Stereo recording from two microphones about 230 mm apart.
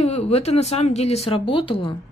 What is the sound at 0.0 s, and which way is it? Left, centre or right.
Speech, left.